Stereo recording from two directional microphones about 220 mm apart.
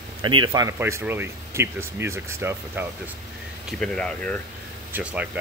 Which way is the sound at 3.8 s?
5° left (ahead or behind).